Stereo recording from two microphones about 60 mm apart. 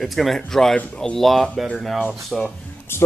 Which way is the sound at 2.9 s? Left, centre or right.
Left.